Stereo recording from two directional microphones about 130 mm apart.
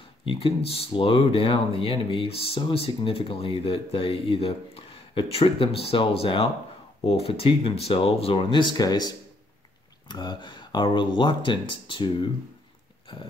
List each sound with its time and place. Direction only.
0.2 s speech: 40° left (ahead or behind)